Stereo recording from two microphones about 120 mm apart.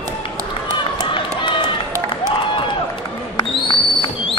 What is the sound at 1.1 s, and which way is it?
Run, 45° left (ahead or behind).